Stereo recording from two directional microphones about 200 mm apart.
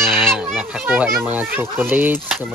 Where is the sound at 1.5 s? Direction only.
10° right (ahead or behind).